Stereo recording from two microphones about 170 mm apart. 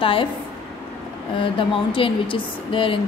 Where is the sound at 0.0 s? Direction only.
30° left (ahead or behind).